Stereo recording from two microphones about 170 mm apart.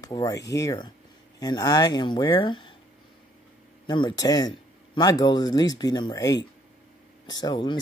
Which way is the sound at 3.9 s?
25° left (ahead or behind).